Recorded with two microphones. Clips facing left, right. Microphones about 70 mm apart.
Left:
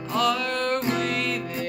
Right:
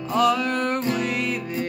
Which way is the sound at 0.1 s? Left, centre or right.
Centre.